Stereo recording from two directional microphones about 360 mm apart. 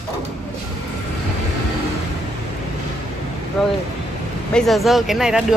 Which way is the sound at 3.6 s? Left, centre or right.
Centre.